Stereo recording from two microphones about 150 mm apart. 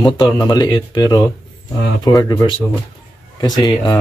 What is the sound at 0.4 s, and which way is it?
Speech, 30° left (ahead or behind).